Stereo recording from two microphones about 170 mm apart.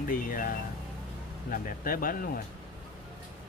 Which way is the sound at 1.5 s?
55° left (ahead or behind).